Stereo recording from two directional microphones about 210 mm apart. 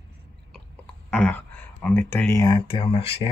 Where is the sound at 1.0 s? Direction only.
5° left (ahead or behind).